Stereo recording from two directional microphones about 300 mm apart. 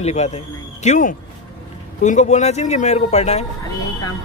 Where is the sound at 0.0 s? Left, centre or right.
Left.